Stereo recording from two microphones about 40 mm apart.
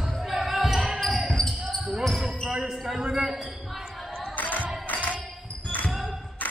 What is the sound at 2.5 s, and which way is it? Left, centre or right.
Basketball bounce, centre.